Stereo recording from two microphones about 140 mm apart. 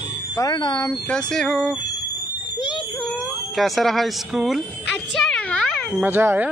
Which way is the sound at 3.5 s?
Centre (ahead or behind).